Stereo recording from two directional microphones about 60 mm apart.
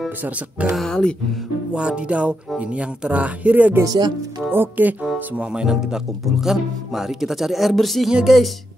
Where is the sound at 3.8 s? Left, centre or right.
Right.